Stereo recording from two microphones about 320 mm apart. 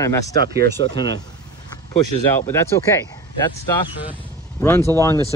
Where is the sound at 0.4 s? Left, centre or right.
Right.